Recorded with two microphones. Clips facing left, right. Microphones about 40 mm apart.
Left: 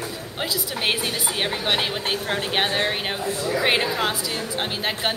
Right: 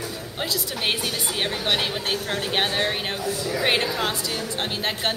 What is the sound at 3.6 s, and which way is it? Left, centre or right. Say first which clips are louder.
A man's voice: left 1 dB; centre.